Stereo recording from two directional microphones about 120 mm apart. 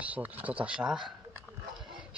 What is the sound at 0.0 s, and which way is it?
Speech, 10° right (ahead or behind).